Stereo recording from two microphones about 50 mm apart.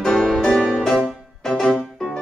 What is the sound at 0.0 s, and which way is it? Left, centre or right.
Music, centre.